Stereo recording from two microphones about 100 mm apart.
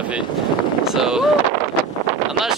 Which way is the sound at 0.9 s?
5° right (ahead or behind).